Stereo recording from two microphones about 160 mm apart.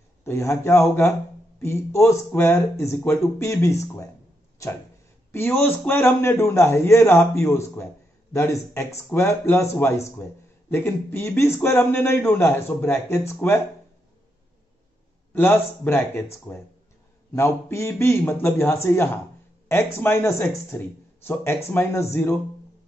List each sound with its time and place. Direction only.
0.2 s a man's voice: 15° left (ahead or behind)
5.3 s a man's voice: 15° left (ahead or behind)
15.3 s a man's voice: 10° left (ahead or behind)